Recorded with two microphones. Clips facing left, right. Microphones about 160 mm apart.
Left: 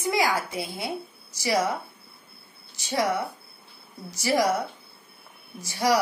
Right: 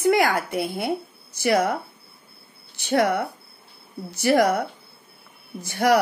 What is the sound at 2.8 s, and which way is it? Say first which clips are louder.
Speech: right 5 dB; 60° right (ahead or behind).